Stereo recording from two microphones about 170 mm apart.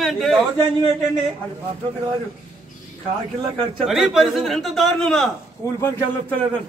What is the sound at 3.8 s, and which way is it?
A man's voice, 5° right (ahead or behind).